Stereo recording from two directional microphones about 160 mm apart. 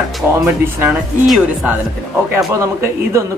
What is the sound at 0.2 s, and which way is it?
A man's voice, 15° right (ahead or behind).